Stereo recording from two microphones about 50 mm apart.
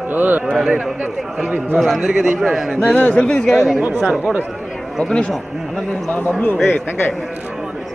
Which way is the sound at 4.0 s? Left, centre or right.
Centre.